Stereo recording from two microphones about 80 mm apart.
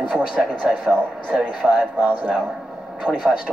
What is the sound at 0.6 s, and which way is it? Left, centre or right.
Speech, centre.